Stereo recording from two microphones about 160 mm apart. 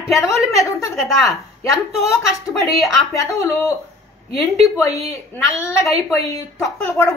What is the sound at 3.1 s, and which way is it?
Speech, 20° left (ahead or behind).